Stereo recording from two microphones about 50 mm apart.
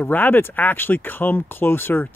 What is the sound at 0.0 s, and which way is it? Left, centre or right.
Speech, left.